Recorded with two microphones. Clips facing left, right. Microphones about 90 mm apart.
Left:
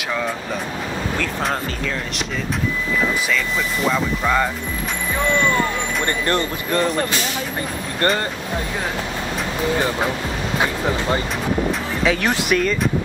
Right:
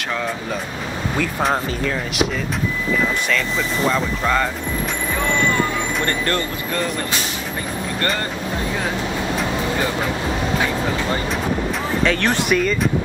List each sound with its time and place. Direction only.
3.8 s speech: 5° left (ahead or behind)
6.0 s speech: 20° left (ahead or behind)
12.0 s speech: 5° left (ahead or behind)